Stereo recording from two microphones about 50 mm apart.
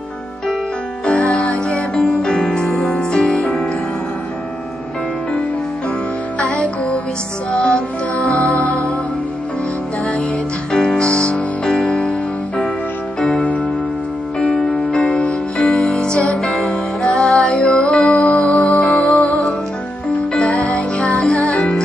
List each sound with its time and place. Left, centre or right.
1.0 s music: left
2.2 s music: centre
6.4 s music: left
10.9 s music: centre
13.2 s music: left
15.5 s music: centre
20.3 s music: centre